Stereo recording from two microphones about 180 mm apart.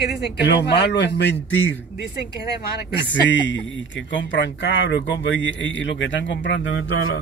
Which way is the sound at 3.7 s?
90° left.